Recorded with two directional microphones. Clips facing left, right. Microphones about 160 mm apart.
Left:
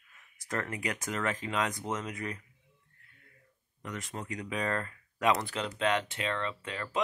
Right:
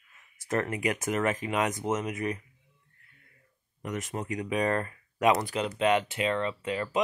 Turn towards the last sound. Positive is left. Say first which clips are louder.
# right 7 dB
turn(degrees=-15)  # may be behind; listen again after turning